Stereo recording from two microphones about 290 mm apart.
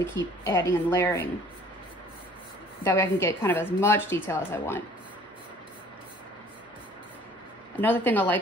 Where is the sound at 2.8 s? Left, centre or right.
Centre.